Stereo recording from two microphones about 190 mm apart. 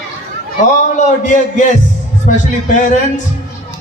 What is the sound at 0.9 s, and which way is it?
A man's voice, 40° left (ahead or behind).